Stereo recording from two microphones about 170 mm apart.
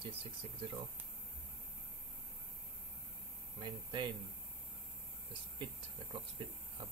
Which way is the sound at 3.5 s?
30° right (ahead or behind).